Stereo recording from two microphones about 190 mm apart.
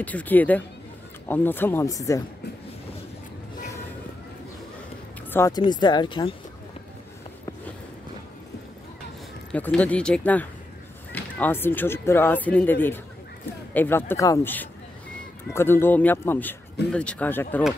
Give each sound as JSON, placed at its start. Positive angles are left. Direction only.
{"t": 0.0, "sound": "speech", "side_deg": 10}
{"t": 5.3, "sound": "speech", "side_deg": 20}
{"t": 9.5, "sound": "speech", "side_deg": 5}